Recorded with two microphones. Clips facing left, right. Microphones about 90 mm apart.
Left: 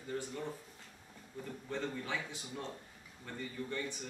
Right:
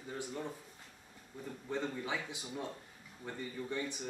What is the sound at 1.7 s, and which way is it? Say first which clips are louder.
Speech: right 1 dB; 15° right (ahead or behind).